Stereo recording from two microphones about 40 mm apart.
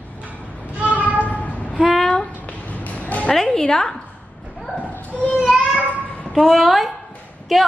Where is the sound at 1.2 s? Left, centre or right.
Left.